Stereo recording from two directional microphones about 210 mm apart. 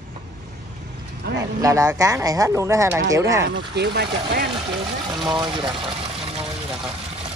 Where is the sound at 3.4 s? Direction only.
50° right (ahead or behind).